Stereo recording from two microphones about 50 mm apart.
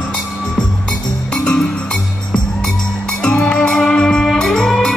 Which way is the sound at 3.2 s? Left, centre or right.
Centre.